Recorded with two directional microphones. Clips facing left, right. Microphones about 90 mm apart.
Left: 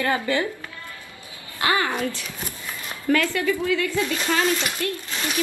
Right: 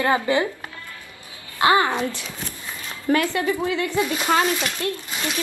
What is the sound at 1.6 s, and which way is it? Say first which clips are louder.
Speech: right 5 dB; 25° right (ahead or behind).